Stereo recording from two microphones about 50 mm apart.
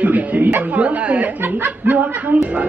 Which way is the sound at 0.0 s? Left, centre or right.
Right.